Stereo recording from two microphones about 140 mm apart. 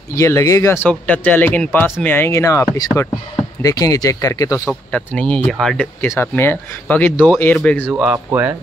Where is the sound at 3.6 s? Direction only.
25° left (ahead or behind).